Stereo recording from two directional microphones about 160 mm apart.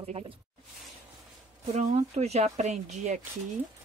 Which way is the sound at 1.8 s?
50° right (ahead or behind).